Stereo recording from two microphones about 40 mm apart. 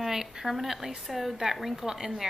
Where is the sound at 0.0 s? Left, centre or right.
Centre.